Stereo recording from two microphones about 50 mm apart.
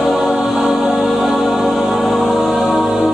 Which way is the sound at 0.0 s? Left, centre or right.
Centre.